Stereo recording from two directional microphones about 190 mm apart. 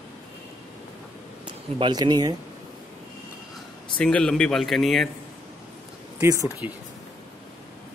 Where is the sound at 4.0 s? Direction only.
5° left (ahead or behind).